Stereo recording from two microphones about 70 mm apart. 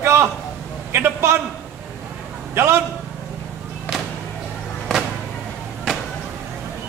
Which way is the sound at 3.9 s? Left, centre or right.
Centre.